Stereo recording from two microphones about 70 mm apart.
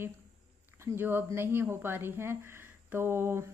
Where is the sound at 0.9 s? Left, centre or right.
Right.